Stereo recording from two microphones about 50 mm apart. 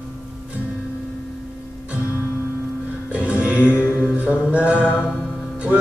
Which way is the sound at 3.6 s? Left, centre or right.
Left.